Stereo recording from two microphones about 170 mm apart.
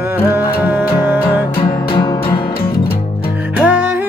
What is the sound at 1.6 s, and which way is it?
Music, 30° left (ahead or behind).